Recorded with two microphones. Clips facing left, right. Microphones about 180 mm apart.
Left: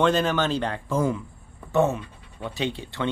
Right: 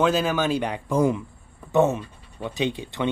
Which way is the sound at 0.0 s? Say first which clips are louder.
Even; 5° right (ahead or behind).